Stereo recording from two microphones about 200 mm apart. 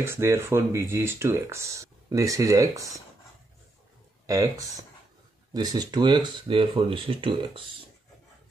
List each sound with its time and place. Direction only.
0.0 s speech: 15° right (ahead or behind)
4.3 s speech: 15° right (ahead or behind)